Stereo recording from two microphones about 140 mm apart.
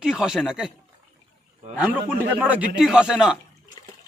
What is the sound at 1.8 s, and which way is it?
A man's voice, 10° right (ahead or behind).